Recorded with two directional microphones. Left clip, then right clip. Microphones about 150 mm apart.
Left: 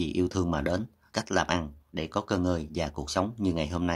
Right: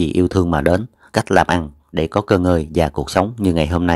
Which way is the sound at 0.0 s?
45° right (ahead or behind).